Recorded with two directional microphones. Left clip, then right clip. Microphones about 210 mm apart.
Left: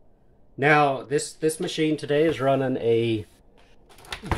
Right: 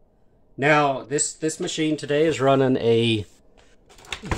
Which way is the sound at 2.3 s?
20° right (ahead or behind).